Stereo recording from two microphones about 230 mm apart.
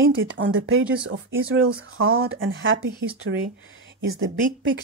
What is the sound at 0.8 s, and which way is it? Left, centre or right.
Speech, centre.